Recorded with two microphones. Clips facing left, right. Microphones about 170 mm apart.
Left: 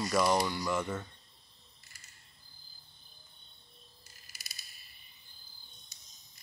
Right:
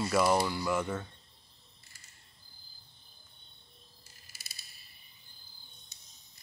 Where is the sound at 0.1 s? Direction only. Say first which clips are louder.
Right 1 dB; 5° right (ahead or behind).